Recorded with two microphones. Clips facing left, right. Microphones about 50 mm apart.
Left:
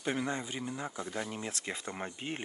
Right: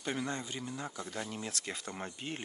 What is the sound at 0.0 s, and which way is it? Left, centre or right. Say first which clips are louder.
Speech: left 3 dB; centre.